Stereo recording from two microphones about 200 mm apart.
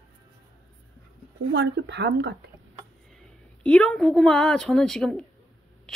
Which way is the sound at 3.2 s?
5° left (ahead or behind).